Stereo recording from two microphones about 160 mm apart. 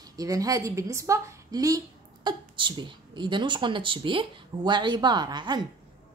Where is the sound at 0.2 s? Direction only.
20° right (ahead or behind).